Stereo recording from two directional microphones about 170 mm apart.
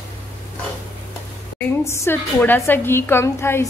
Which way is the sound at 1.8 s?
15° left (ahead or behind).